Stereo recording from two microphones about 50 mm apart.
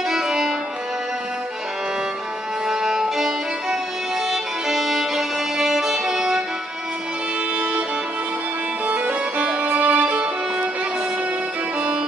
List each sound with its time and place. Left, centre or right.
0.1 s music: centre
2.7 s music: centre
7.5 s music: right
8.8 s music: right